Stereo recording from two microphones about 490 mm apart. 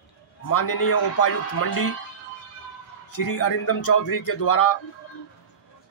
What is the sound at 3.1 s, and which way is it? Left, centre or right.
A man's voice, left.